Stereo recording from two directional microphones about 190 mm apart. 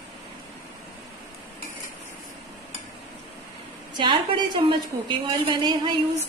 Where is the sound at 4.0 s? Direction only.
25° right (ahead or behind).